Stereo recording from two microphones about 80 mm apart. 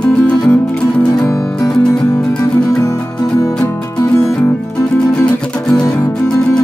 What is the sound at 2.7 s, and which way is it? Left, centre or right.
Music, left.